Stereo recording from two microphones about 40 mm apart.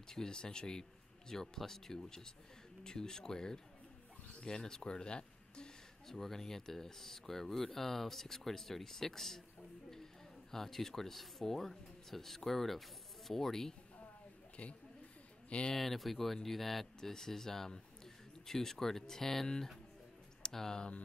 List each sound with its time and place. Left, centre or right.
0.1 s speech: centre
6.0 s speech: centre
10.5 s speech: centre
14.6 s speech: left
15.7 s speech: centre